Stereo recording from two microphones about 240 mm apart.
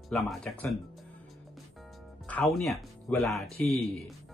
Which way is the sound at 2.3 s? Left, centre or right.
Centre.